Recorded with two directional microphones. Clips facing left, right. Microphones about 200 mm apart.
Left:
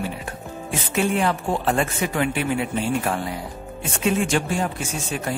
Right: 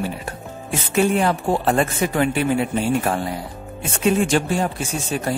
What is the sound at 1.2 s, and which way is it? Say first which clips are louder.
Speech: right 3 dB; 40° right (ahead or behind).